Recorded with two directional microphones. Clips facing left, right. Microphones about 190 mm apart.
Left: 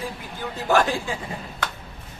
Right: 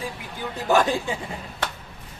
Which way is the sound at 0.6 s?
20° right (ahead or behind).